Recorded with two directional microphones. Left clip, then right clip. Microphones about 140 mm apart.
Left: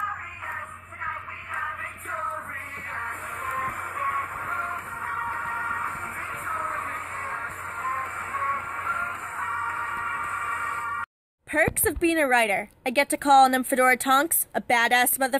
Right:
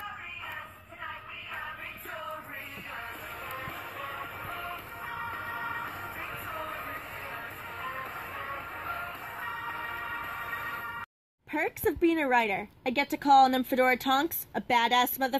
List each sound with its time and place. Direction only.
5.4 s music: 40° left (ahead or behind)
6.9 s music: 65° left (ahead or behind)
7.9 s music: 35° left (ahead or behind)
11.5 s a woman's voice: 30° left (ahead or behind)